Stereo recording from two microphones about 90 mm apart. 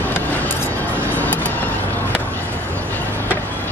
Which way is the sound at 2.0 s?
20° left (ahead or behind).